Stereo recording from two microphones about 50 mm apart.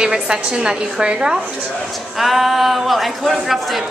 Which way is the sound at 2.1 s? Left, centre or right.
Centre.